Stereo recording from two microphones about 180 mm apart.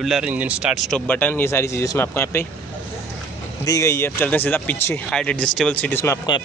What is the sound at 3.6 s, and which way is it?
Speech, 15° left (ahead or behind).